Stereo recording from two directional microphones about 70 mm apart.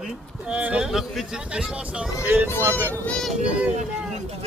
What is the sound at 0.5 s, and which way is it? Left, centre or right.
Speech, centre.